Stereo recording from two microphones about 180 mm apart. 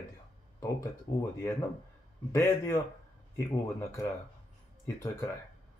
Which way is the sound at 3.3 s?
15° left (ahead or behind).